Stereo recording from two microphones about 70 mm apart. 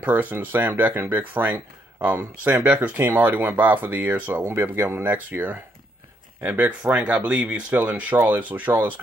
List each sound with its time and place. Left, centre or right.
0.0 s speech: right
3.2 s speech: right